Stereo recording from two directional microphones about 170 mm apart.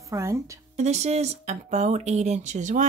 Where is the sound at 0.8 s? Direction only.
40° right (ahead or behind).